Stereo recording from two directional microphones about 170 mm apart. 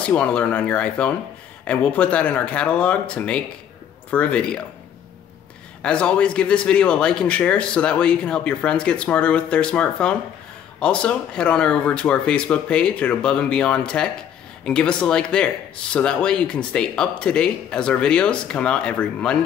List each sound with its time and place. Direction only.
0.0 s a man's voice: 5° left (ahead or behind)
5.8 s a man's voice: 5° left (ahead or behind)